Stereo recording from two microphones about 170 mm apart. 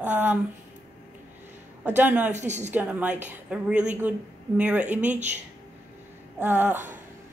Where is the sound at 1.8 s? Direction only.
10° right (ahead or behind).